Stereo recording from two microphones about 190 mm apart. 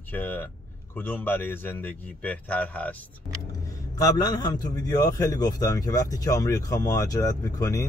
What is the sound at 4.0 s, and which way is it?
A man's voice, 20° left (ahead or behind).